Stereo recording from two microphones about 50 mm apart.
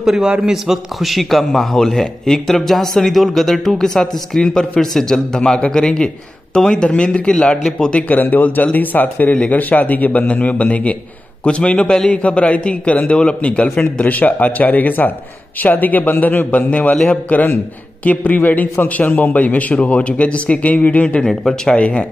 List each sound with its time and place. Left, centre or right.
0.0 s a man's voice: centre
8.1 s a man's voice: left
21.3 s speech: centre
21.7 s a man's voice: left